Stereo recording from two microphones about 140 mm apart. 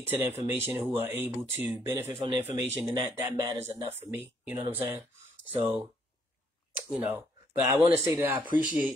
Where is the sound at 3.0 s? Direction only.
30° right (ahead or behind).